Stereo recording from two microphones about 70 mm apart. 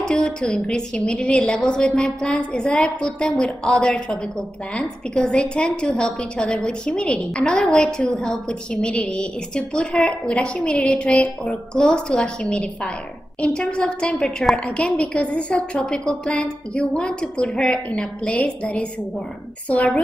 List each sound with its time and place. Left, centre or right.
0.0 s a woman's voice: centre